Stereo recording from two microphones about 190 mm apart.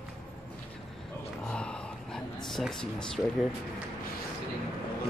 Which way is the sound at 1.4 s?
5° left (ahead or behind).